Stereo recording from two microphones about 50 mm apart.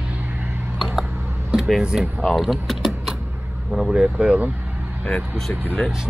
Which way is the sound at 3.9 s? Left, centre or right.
Right.